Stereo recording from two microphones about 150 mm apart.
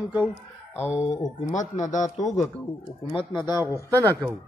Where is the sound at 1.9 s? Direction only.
55° left (ahead or behind).